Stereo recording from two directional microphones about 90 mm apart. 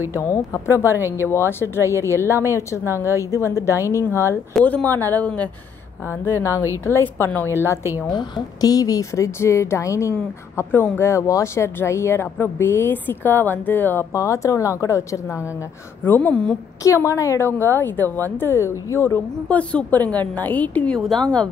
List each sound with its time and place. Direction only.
0.1 s a woman's voice: 35° left (ahead or behind)
0.9 s speech: 25° right (ahead or behind)
1.3 s a woman's voice: 30° left (ahead or behind)
4.6 s a woman's voice: 20° left (ahead or behind)
6.2 s speech: 30° left (ahead or behind)
8.1 s speech: 50° left (ahead or behind); by 14.0 s 20° left (ahead or behind)
14.1 s a woman's voice: 35° left (ahead or behind)
16.0 s a woman's voice: 20° left (ahead or behind)
16.8 s speech: 35° left (ahead or behind)
19.5 s a woman's voice: 15° left (ahead or behind)
21.0 s speech: 5° left (ahead or behind)